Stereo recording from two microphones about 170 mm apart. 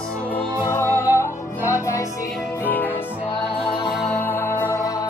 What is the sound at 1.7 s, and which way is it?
Music, 15° left (ahead or behind).